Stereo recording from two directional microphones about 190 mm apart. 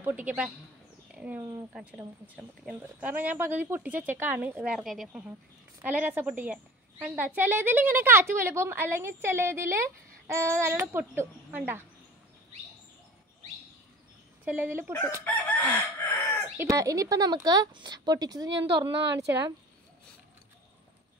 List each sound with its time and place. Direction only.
0.0 s a woman's voice: 10° right (ahead or behind)
14.4 s a woman's voice: 10° right (ahead or behind)
15.2 s chicken: 10° left (ahead or behind)
16.5 s a woman's voice: 15° right (ahead or behind)